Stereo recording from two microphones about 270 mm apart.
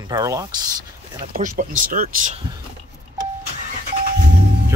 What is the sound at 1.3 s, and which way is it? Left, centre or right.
Speech, right.